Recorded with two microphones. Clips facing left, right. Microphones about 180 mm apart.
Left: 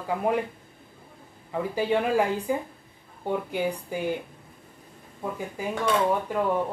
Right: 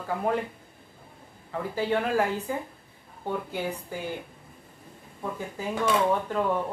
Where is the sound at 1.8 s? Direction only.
15° left (ahead or behind).